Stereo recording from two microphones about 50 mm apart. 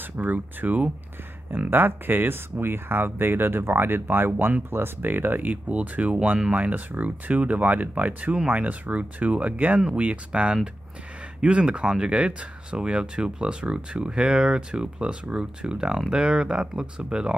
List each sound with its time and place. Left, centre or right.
0.0 s speech: right
1.7 s speech: right
5.7 s speech: right